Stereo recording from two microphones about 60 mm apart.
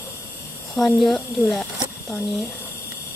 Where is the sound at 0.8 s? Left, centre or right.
Centre.